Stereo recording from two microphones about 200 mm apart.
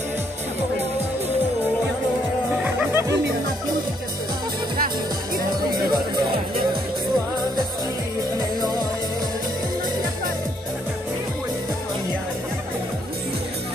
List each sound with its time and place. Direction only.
2.5 s music: 10° right (ahead or behind)
4.7 s music: 45° right (ahead or behind)
5.8 s music: 20° right (ahead or behind)